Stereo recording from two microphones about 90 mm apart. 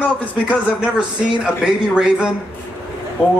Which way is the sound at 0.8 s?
10° right (ahead or behind).